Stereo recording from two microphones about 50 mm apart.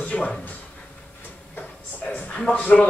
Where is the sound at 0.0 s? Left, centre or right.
Left.